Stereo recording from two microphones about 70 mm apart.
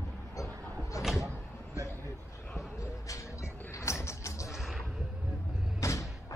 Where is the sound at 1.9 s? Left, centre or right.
Left.